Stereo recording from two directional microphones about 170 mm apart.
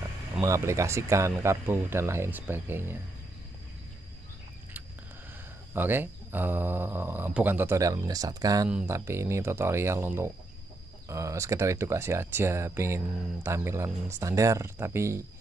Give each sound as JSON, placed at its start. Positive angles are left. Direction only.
{"t": 0.4, "sound": "speech", "side_deg": -15}
{"t": 5.7, "sound": "speech", "side_deg": -10}